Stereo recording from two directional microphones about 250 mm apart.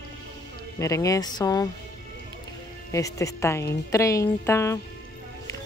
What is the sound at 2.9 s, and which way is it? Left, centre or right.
A woman's voice, centre.